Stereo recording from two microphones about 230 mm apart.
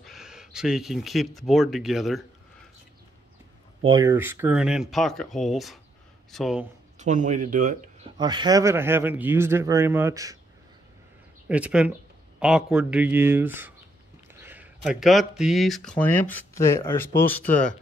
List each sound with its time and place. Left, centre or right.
0.0 s speech: centre
3.8 s speech: centre
7.0 s speech: right
8.2 s speech: centre
11.4 s speech: centre